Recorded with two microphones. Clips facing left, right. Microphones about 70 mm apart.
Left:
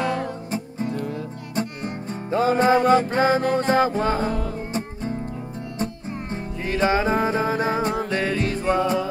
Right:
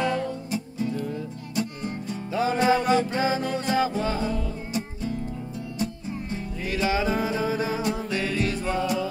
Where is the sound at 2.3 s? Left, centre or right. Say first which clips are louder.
Left 4 dB; left.